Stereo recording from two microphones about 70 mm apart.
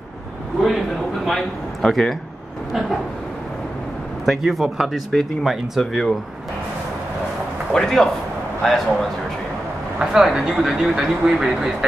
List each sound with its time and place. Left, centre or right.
0.6 s speech: centre
4.3 s speech: centre
7.7 s a man's voice: centre
9.9 s speech: centre